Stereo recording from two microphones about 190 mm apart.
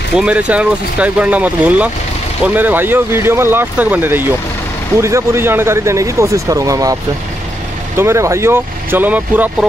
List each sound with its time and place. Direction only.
0.1 s speech: 5° right (ahead or behind)
8.0 s speech: 15° right (ahead or behind)